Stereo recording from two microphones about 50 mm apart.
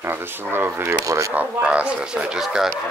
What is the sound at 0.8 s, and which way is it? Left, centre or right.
Speech, right.